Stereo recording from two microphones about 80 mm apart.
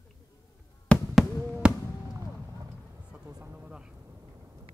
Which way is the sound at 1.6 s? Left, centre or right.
Centre.